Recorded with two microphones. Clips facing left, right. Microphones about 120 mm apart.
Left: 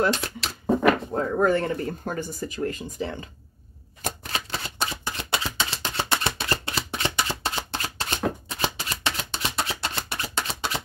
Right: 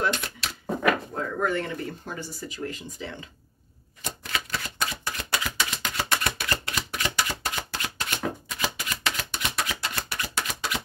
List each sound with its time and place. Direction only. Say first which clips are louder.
0.0 s speech: left 4 dB; 30° left (ahead or behind)
4.3 s shuffling cards: left 1 dB; 30° left (ahead or behind)